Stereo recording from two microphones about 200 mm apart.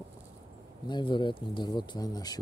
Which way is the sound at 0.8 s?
25° left (ahead or behind).